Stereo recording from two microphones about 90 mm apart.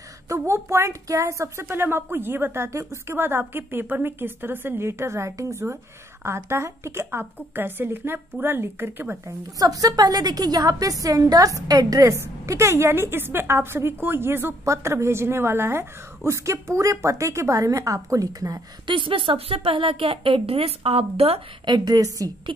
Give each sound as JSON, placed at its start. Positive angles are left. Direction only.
{"t": 0.3, "sound": "speech", "side_deg": -30}
{"t": 9.6, "sound": "a woman's voice", "side_deg": -40}
{"t": 18.9, "sound": "a woman's voice", "side_deg": -70}
{"t": 21.6, "sound": "a woman's voice", "side_deg": -50}